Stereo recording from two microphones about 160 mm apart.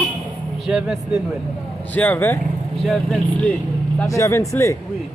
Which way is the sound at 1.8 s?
10° left (ahead or behind).